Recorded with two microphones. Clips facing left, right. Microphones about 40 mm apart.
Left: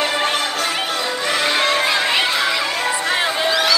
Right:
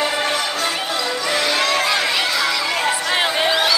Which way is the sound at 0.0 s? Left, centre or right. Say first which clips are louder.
Left 1 dB; left.